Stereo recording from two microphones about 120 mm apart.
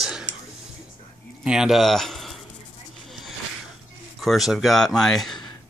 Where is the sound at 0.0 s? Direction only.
5° right (ahead or behind).